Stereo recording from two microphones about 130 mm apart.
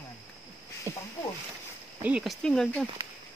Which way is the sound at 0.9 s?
20° right (ahead or behind).